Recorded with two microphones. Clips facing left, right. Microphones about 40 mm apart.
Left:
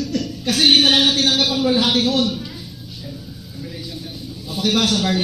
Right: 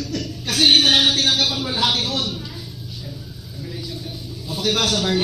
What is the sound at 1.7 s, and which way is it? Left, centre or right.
Speech, left.